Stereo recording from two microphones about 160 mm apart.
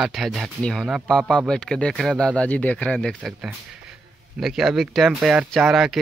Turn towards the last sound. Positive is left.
turn(degrees=0)  # may be behind; listen again after turning